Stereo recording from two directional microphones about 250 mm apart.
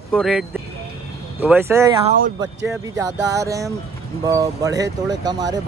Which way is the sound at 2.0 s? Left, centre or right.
Right.